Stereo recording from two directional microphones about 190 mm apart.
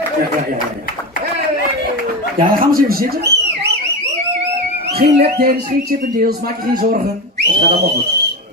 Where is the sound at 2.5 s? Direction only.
50° right (ahead or behind).